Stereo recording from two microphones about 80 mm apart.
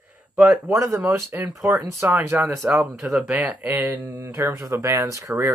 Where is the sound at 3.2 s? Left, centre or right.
Centre.